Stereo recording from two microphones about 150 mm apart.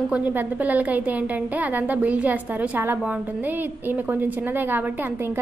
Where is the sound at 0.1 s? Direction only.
10° right (ahead or behind).